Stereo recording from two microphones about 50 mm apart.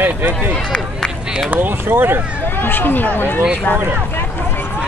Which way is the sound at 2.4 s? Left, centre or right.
Left.